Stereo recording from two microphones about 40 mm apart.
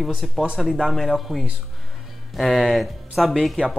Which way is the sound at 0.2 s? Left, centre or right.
Centre.